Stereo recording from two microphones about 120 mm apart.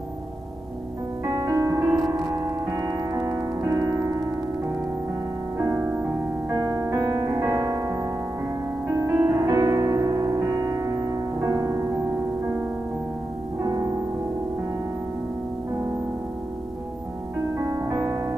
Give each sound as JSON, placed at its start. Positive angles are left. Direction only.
{"t": 1.2, "sound": "music", "side_deg": -30}
{"t": 5.6, "sound": "music", "side_deg": -30}
{"t": 9.5, "sound": "music", "side_deg": -30}
{"t": 13.6, "sound": "music", "side_deg": -30}
{"t": 17.6, "sound": "music", "side_deg": -25}